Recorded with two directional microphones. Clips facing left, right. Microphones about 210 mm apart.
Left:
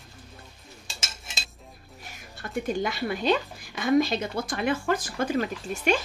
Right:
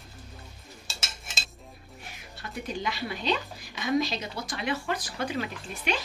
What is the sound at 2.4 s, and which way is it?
A woman's voice, 50° left (ahead or behind).